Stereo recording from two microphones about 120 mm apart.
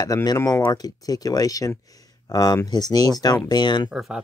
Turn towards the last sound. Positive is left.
turn(degrees=-5)  # may be behind; listen again after turning